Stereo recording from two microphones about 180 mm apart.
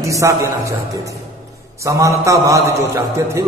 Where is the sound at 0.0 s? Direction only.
15° right (ahead or behind).